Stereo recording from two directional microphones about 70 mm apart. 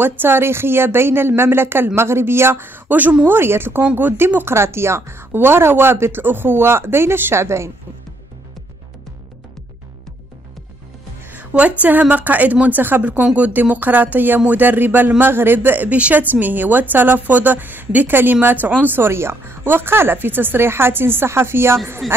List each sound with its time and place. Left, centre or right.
0.2 s speech: right
3.3 s speech: right
11.2 s music: right
11.8 s a man's voice: right
22.0 s a man's voice: centre